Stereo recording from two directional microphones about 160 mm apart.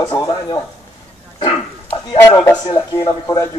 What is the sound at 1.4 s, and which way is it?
Bow-wow, 35° left (ahead or behind).